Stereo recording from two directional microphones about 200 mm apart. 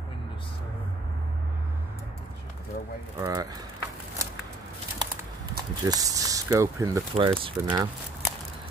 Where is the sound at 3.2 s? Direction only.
15° right (ahead or behind).